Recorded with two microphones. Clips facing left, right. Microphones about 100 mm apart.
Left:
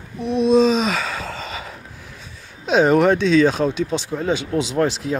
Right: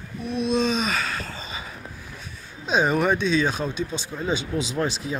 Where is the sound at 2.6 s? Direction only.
90° left.